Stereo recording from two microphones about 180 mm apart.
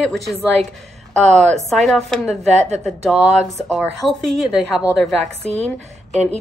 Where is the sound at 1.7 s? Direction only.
Centre (ahead or behind).